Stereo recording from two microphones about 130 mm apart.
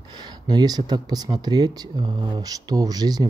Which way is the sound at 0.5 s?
30° right (ahead or behind).